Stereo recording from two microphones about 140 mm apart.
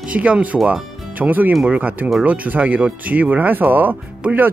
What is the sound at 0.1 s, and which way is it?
Speech, 10° right (ahead or behind).